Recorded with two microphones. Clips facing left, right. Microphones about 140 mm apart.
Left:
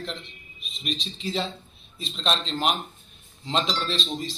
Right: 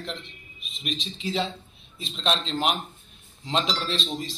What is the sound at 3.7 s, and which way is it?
Speech, 5° right (ahead or behind).